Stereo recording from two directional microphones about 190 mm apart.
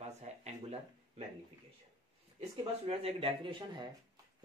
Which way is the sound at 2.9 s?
30° right (ahead or behind).